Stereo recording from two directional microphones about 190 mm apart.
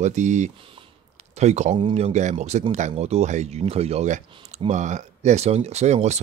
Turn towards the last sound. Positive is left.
turn(degrees=-35)  # may be behind; listen again after turning